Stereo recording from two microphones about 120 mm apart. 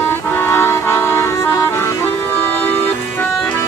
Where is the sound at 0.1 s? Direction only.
20° left (ahead or behind).